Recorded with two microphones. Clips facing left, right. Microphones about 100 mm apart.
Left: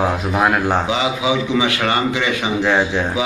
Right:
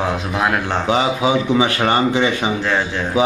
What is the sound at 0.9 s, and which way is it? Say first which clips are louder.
A man's voice: right 2 dB; 40° right (ahead or behind).